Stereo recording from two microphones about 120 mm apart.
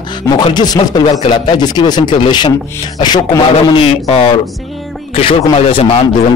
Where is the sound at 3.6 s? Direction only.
55° left (ahead or behind).